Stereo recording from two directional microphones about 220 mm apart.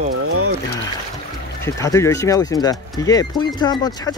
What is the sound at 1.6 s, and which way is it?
Speech, 15° left (ahead or behind).